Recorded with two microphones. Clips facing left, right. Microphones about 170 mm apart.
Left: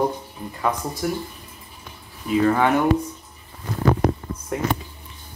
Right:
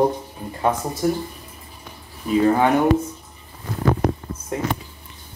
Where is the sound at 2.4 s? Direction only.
25° right (ahead or behind).